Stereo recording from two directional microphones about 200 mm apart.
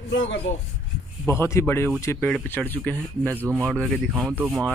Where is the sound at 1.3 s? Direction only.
15° left (ahead or behind).